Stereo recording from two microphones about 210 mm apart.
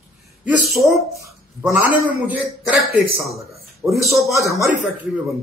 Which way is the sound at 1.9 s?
5° right (ahead or behind).